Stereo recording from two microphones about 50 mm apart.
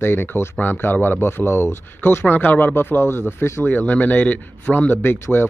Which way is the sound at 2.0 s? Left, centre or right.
Left.